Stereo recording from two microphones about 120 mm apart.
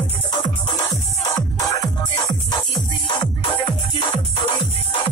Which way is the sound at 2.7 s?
40° left (ahead or behind).